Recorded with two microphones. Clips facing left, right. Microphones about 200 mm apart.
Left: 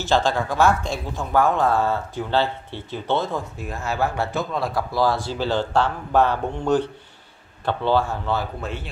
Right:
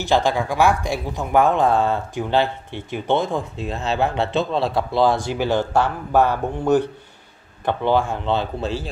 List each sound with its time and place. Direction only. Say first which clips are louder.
0.0 s speech: right 2 dB; 15° right (ahead or behind)